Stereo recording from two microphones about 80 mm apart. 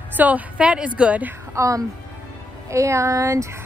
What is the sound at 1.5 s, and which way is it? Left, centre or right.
Speech, right.